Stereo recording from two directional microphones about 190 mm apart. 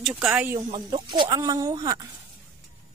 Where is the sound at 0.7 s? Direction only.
25° right (ahead or behind).